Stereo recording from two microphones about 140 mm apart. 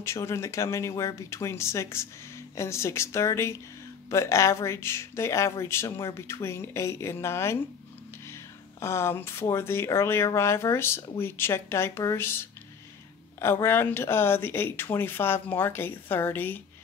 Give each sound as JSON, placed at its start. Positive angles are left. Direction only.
{"t": 0.0, "sound": "speech", "side_deg": 20}